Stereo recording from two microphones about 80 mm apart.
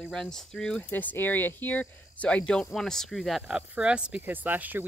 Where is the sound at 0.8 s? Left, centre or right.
Left; by 3.4 s centre.